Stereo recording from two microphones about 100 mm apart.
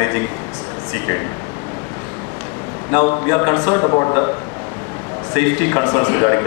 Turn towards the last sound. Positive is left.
turn(degrees=30)  # may be behind; listen again after turning